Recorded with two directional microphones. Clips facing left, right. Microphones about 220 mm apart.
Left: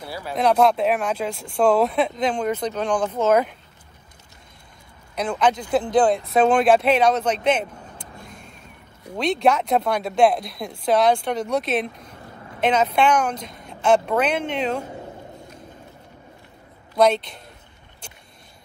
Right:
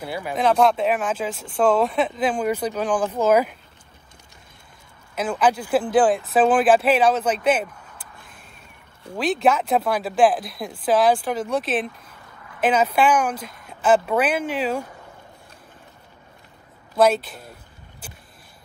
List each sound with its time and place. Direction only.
0.3 s speech: centre (ahead or behind)
5.1 s speech: 5° right (ahead or behind)
8.3 s vehicle: 5° right (ahead or behind)
9.1 s speech: 5° right (ahead or behind)
16.9 s speech: 5° right (ahead or behind)
18.0 s vehicle: 5° right (ahead or behind)